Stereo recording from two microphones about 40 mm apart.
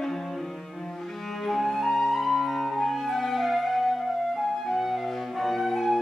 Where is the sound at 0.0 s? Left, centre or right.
Centre.